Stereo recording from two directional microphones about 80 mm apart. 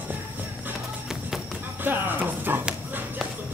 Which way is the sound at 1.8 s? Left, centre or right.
Right.